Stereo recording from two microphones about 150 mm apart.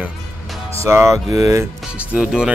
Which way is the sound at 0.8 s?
20° right (ahead or behind).